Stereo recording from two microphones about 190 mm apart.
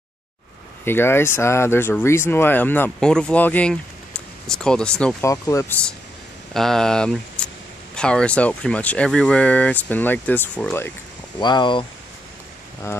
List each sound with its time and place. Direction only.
0.8 s speech: 10° left (ahead or behind)
5.2 s speech: 15° left (ahead or behind)
6.5 s speech: centre (ahead or behind)
11.3 s speech: 25° left (ahead or behind)